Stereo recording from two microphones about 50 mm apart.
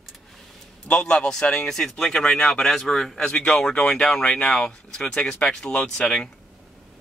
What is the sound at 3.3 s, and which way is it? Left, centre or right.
Speech, left.